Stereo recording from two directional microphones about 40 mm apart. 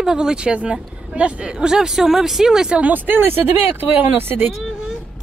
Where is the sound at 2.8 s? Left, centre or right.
Right.